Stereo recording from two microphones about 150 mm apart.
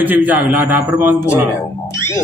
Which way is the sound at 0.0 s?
10° right (ahead or behind).